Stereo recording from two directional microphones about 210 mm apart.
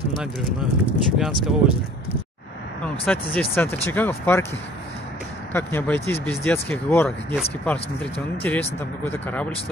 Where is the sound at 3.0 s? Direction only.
10° left (ahead or behind).